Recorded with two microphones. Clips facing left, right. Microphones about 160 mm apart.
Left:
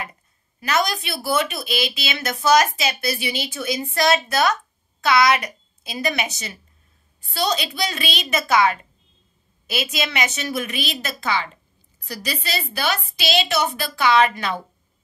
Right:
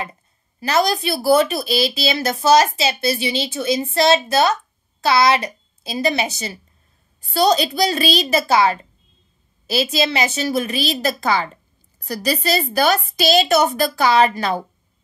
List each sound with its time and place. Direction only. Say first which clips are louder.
0.6 s a woman's voice: right 4 dB; 30° right (ahead or behind)